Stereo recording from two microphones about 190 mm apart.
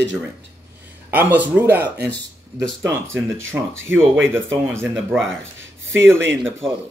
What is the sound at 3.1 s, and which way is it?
Speech, 10° right (ahead or behind).